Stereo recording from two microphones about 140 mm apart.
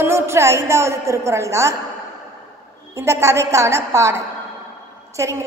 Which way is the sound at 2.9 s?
20° right (ahead or behind).